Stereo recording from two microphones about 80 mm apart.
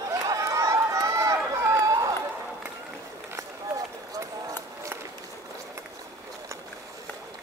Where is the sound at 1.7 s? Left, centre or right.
Right.